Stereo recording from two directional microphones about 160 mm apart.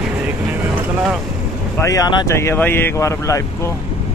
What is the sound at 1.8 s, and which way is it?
Speech, 20° left (ahead or behind).